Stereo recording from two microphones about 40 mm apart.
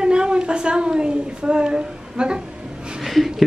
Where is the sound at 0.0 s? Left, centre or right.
Right.